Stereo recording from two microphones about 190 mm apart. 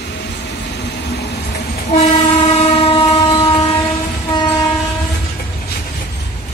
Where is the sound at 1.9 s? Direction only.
35° left (ahead or behind).